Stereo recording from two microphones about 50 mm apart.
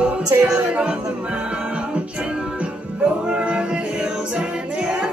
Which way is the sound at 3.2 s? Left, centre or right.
Centre.